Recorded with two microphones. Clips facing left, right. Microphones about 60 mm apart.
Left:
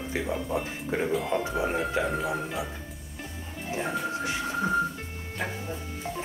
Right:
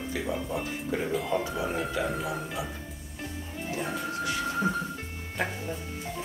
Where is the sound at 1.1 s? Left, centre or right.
Centre.